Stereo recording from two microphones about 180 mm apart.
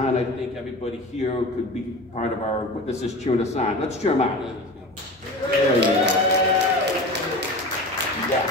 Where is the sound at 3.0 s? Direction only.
40° left (ahead or behind).